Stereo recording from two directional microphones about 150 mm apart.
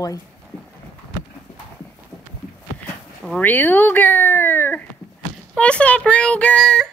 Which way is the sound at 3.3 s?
10° left (ahead or behind).